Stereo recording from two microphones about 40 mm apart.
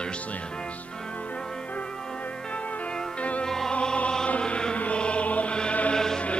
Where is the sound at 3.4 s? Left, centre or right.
Centre.